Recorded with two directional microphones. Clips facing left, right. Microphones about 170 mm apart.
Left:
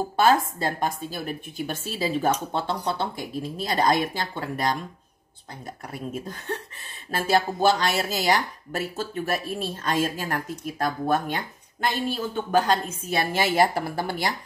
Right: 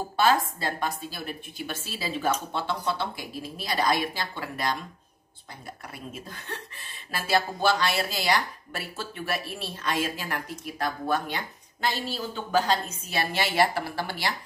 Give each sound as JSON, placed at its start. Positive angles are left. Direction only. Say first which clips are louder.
{"t": 0.1, "sound": "speech", "louder": "left 2 dB", "side_deg": 45}
{"t": 6.1, "sound": "speech", "louder": "left 7 dB", "side_deg": 45}